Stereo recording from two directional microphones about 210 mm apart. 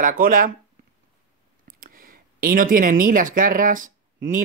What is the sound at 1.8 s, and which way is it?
Speech, 45° right (ahead or behind).